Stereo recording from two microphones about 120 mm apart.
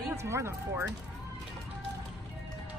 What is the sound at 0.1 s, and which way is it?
Speech, 25° right (ahead or behind).